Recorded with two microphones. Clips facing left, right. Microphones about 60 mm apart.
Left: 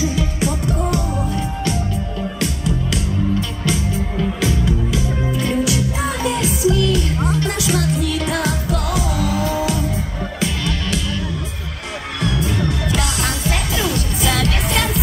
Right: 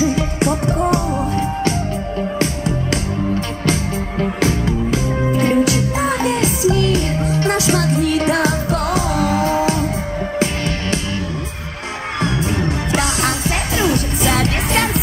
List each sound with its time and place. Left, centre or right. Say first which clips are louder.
0.0 s music: right 4 dB; right
12.2 s music: right 1 dB; right